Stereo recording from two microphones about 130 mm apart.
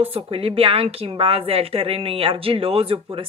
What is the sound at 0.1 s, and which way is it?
Speech, 45° right (ahead or behind).